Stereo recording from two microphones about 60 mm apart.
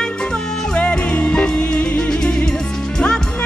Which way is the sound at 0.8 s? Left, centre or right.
Left.